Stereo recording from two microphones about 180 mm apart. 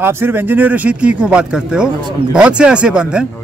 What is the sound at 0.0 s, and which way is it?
Speech, 10° right (ahead or behind).